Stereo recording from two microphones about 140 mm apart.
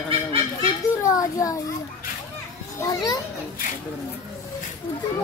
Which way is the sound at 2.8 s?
25° left (ahead or behind).